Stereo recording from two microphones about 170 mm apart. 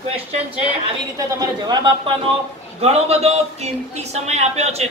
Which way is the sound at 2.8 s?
40° right (ahead or behind).